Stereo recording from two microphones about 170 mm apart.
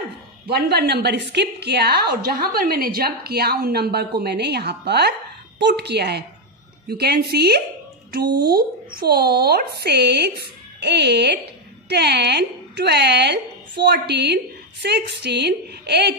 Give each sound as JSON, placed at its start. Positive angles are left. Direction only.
{"t": 0.5, "sound": "speech", "side_deg": -70}